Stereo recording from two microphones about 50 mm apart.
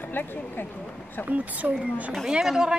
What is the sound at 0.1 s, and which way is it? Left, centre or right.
Speech, left.